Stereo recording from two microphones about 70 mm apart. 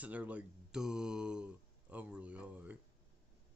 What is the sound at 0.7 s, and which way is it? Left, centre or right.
Mantra, centre.